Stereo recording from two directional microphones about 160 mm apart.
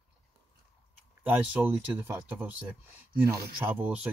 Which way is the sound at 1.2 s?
10° right (ahead or behind).